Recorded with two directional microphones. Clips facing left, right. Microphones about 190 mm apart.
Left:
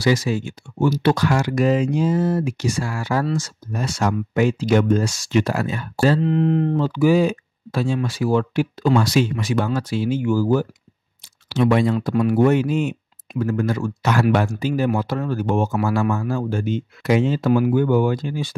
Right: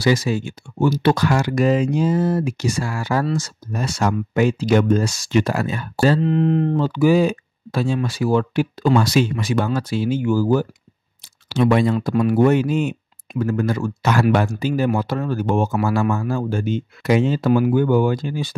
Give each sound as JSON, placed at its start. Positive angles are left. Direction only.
{"t": 0.0, "sound": "speech", "side_deg": -35}